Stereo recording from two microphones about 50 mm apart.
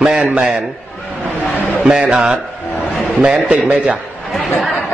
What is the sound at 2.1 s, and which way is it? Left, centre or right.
A man's voice, centre.